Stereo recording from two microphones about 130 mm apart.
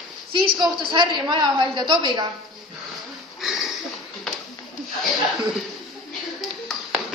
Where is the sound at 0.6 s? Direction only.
35° right (ahead or behind).